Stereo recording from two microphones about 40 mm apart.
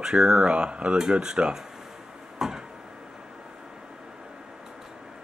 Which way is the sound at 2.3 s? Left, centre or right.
Centre.